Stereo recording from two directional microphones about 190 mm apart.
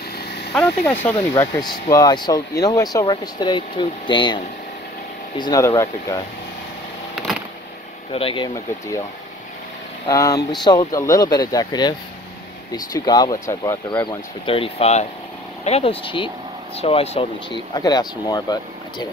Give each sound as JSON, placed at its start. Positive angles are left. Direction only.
{"t": 0.2, "sound": "vehicle", "side_deg": 60}
{"t": 0.5, "sound": "speech", "side_deg": 5}
{"t": 5.4, "sound": "speech", "side_deg": 20}
{"t": 8.1, "sound": "speech", "side_deg": 30}
{"t": 10.0, "sound": "speech", "side_deg": 15}